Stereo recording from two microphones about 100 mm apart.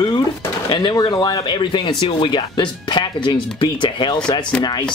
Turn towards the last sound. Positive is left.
turn(degrees=45)  # may be behind; listen again after turning